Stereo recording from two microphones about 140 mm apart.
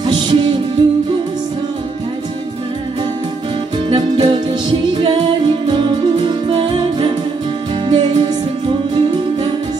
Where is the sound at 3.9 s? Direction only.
30° right (ahead or behind).